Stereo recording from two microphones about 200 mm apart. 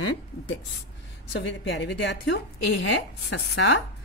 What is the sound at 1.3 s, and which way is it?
A woman's voice, 65° left (ahead or behind).